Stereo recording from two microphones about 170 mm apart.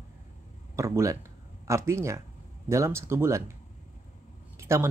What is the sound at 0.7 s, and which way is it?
Speech, 15° right (ahead or behind).